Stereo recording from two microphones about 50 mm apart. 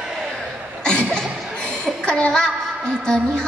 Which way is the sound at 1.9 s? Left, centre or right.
Centre.